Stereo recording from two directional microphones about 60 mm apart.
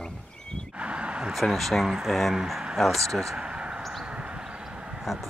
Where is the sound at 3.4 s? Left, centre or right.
Centre.